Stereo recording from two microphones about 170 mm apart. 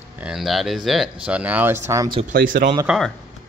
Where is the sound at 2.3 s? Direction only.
55° right (ahead or behind).